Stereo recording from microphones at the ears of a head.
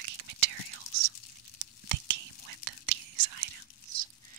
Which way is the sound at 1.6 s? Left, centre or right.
Right.